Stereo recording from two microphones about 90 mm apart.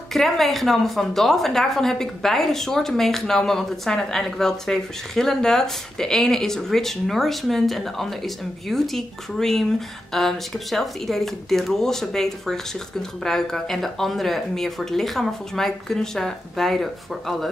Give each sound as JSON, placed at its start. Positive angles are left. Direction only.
{"t": 0.1, "sound": "a woman's voice", "side_deg": 0}